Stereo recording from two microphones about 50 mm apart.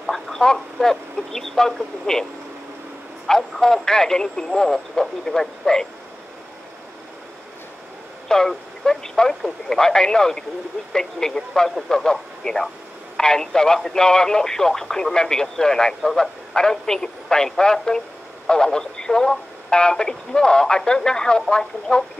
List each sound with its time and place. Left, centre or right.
0.0 s a sound: centre
0.7 s speech: centre
3.3 s speech: centre
8.3 s speech: centre